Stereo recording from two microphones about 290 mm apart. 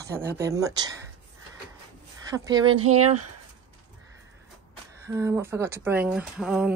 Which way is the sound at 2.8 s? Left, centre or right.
Right.